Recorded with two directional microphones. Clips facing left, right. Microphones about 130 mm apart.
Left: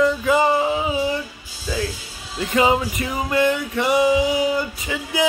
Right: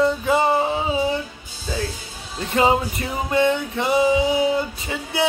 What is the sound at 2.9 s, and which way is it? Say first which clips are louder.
Music: even; 30° right (ahead or behind).